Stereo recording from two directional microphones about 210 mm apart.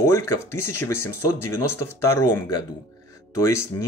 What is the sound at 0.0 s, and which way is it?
Speech, 15° left (ahead or behind).